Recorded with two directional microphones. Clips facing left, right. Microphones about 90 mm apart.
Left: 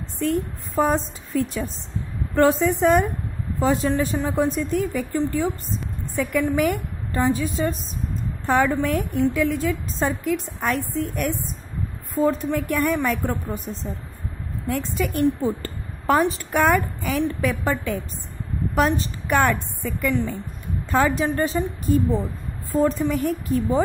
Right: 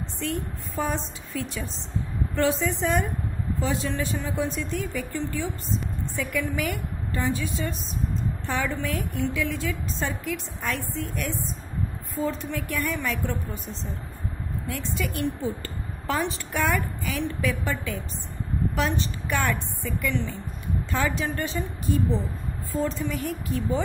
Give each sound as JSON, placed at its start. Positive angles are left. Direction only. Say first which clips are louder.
{"t": 0.2, "sound": "a woman's voice", "louder": "left 8 dB", "side_deg": 45}